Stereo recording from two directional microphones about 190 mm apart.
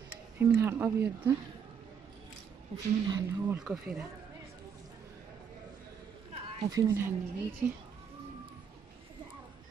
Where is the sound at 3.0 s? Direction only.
20° right (ahead or behind).